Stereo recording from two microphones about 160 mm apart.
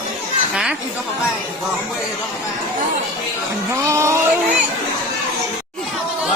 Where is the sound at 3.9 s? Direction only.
15° right (ahead or behind).